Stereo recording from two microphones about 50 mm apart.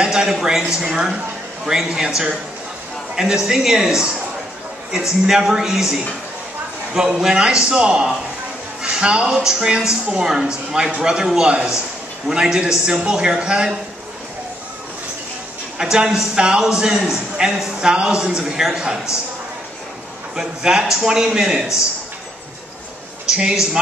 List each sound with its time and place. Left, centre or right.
0.0 s a man's voice: centre
5.2 s a man's voice: centre
15.8 s a man's voice: centre
20.3 s a man's voice: centre
23.3 s a man's voice: centre